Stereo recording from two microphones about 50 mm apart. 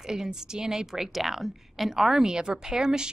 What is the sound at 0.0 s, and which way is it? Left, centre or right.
A woman's voice, centre.